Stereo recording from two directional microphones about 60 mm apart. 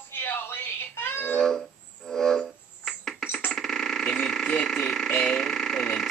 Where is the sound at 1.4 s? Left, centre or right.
Centre.